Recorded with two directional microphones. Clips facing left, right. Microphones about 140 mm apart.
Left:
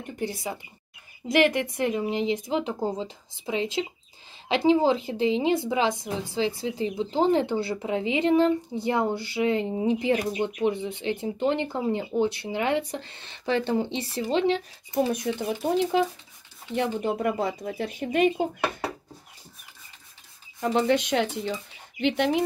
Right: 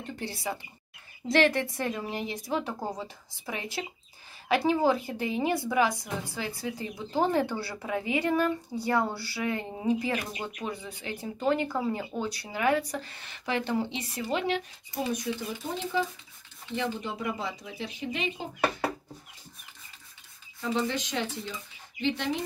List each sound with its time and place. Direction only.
0.0 s speech: 20° left (ahead or behind)
15.1 s speech: 65° left (ahead or behind)
16.7 s speech: 55° left (ahead or behind)
20.6 s speech: 60° left (ahead or behind)